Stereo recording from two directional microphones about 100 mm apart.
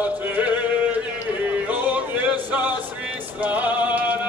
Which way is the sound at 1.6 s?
15° right (ahead or behind).